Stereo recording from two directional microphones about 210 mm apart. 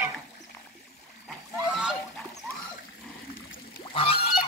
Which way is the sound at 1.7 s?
5° right (ahead or behind).